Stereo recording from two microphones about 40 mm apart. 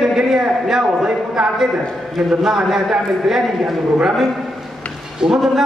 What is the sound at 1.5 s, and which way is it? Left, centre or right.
A man's voice, centre.